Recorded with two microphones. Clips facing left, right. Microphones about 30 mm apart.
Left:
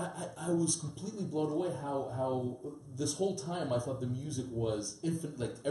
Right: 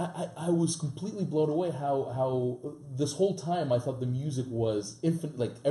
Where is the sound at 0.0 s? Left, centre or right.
Centre.